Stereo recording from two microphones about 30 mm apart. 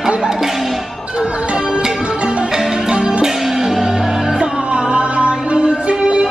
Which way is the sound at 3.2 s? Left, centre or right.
Centre.